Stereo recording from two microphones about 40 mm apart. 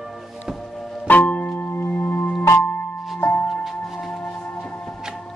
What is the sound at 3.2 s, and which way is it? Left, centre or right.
Music, left.